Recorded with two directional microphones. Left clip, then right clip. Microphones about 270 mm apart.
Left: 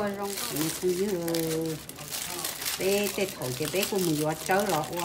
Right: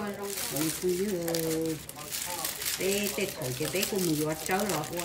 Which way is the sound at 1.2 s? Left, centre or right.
Centre.